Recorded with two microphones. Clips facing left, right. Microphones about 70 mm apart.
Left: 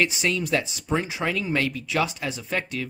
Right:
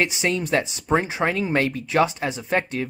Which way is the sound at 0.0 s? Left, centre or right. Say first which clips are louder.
Right 1 dB; right.